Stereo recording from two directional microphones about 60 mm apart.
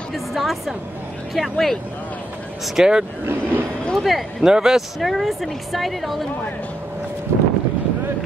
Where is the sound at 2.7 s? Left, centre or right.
Centre.